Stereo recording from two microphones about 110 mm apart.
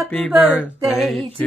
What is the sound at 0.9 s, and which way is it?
Speech, centre (ahead or behind).